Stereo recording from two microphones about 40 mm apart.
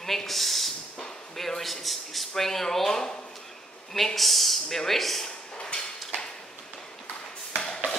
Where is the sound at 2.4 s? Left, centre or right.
Centre.